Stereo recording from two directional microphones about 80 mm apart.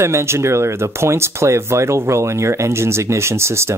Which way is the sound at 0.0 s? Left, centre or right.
Right.